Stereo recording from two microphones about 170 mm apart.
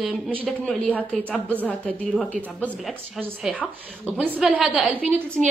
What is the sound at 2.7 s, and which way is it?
A woman's voice, 10° right (ahead or behind).